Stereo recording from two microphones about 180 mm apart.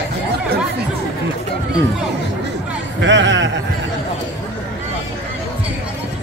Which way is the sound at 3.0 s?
90° right.